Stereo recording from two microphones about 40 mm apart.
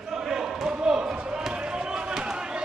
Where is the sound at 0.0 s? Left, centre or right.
Centre.